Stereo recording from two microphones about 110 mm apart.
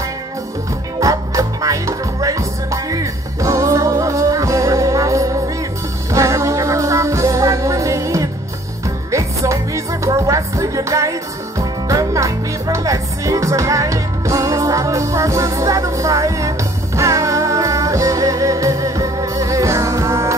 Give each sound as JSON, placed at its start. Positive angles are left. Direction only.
{"t": 0.9, "sound": "music", "side_deg": -30}